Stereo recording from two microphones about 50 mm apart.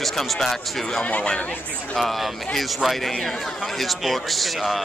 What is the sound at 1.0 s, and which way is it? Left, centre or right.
Speech, left.